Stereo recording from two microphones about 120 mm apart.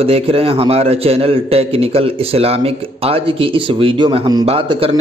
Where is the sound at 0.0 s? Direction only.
50° right (ahead or behind).